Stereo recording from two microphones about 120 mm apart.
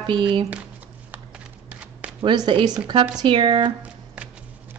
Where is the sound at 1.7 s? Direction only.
10° right (ahead or behind).